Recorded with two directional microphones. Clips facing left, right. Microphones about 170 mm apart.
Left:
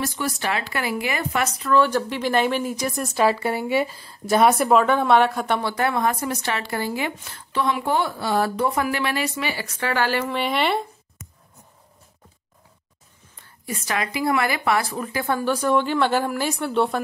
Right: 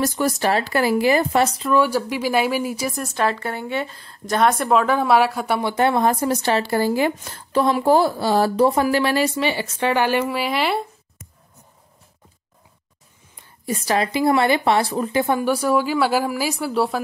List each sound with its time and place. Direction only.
0.0 s speech: 40° right (ahead or behind)
1.7 s speech: 10° right (ahead or behind)
5.6 s speech: 20° right (ahead or behind); by 10.9 s centre (ahead or behind)
13.7 s speech: 35° right (ahead or behind); by 17.0 s 5° right (ahead or behind)